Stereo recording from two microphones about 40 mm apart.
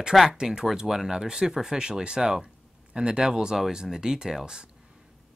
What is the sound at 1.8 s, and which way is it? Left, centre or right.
Speech, right.